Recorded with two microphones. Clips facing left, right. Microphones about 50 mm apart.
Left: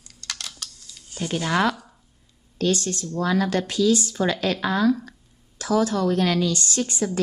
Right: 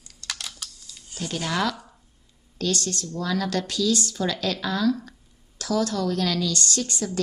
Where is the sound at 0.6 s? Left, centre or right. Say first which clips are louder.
Left 1 dB; centre.